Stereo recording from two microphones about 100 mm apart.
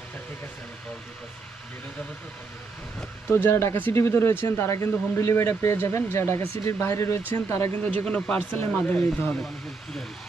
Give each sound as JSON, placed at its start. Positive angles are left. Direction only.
{"t": 3.3, "sound": "speech", "side_deg": 20}
{"t": 7.8, "sound": "speech", "side_deg": 10}